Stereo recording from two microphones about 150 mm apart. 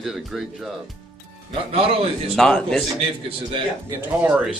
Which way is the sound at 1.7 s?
40° right (ahead or behind).